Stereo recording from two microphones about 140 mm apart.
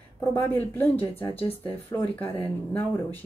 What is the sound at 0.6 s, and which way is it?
Speech, 15° left (ahead or behind).